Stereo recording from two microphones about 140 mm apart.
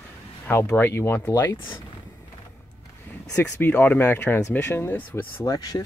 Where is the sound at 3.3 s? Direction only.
20° left (ahead or behind).